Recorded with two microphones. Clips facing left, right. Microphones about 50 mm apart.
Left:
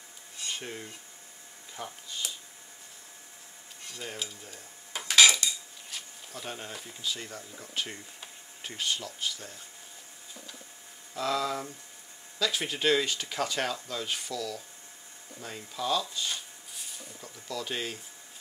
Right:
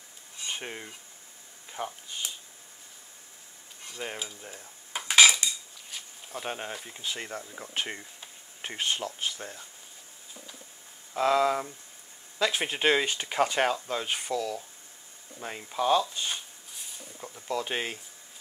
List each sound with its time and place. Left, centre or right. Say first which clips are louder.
0.6 s speech: right 1 dB; right
4.0 s speech: right 4 dB; right
4.4 s dishes: right 2 dB; right
6.3 s speech: right 5 dB; right
6.7 s speech: right 3 dB; centre
7.0 s speech: even; right
11.1 s speech: right 6 dB; right